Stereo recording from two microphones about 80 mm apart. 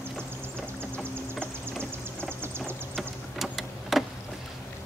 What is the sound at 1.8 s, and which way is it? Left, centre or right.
Vehicle, right.